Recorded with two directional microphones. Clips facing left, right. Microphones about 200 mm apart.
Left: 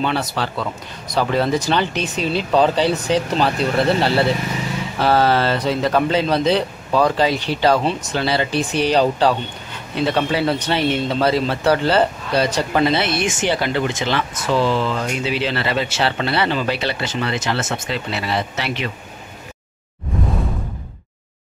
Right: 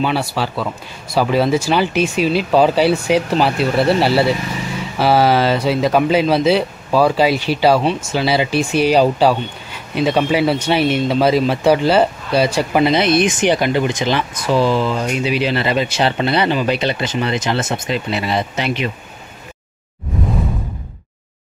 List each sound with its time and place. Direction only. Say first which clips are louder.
0.0 s speech: right 3 dB; 5° right (ahead or behind)